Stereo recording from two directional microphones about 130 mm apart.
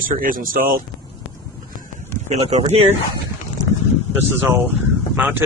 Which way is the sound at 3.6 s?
30° right (ahead or behind).